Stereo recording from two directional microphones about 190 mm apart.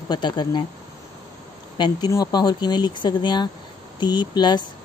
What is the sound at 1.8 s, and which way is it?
Speech, 20° left (ahead or behind).